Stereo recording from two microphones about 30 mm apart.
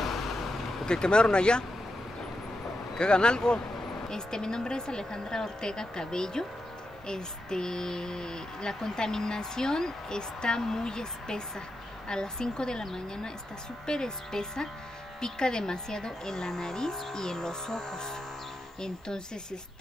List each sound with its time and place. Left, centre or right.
0.0 s vehicle: centre
0.8 s a child's voice: left
3.0 s a child's voice: left